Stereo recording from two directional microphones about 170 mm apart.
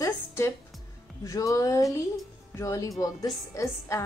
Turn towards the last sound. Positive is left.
turn(degrees=20)  # may be behind; listen again after turning